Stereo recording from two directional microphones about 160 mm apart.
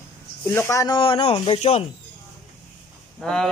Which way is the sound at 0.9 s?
30° left (ahead or behind).